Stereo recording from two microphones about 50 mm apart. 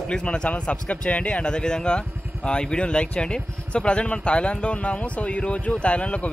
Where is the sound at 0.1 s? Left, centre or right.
Centre.